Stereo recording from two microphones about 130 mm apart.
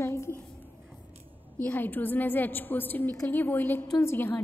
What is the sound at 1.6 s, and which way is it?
A woman's voice, 15° left (ahead or behind).